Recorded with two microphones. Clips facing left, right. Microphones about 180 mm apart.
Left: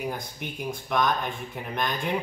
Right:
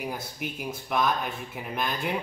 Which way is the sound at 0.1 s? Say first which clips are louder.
Even; 5° right (ahead or behind).